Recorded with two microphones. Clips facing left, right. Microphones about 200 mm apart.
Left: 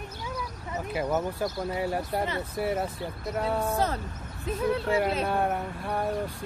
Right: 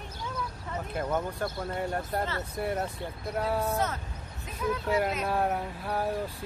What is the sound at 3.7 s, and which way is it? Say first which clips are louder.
Speech: left 3 dB; 35° left (ahead or behind).